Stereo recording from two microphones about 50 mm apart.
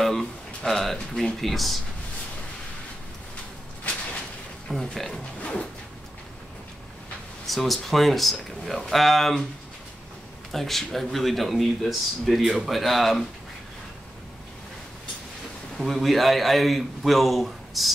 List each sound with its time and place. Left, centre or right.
0.0 s a sound: centre
0.7 s speech: centre
4.6 s speech: centre
5.1 s speech: left
7.4 s speech: centre
10.5 s speech: centre
15.8 s speech: centre